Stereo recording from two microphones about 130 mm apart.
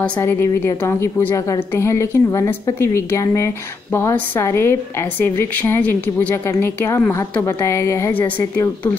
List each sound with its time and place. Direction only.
0.2 s a woman's voice: 20° left (ahead or behind)